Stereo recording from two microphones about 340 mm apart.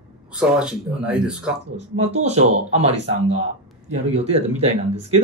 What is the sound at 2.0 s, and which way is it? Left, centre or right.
Speech, centre.